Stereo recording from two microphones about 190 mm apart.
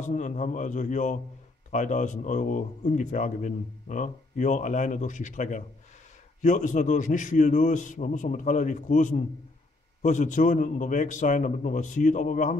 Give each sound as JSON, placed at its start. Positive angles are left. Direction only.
{"t": 0.0, "sound": "a man's voice", "side_deg": 40}